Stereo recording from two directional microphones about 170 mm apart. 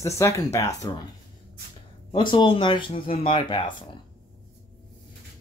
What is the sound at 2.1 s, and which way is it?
Speech, 30° left (ahead or behind).